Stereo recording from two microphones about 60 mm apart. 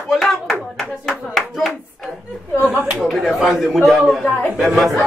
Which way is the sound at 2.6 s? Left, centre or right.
Right.